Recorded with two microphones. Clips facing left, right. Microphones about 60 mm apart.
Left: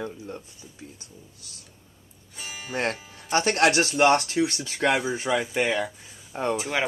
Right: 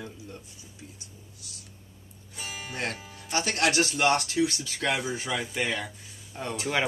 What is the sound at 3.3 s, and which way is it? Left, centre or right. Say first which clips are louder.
Speech: left 5 dB; left.